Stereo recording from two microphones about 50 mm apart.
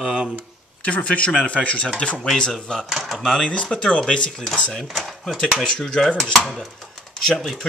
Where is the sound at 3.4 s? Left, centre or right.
Left.